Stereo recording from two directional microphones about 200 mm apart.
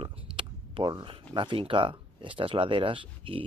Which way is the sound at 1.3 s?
25° right (ahead or behind).